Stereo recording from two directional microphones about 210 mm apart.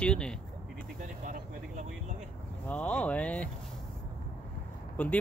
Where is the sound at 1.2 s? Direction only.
40° right (ahead or behind).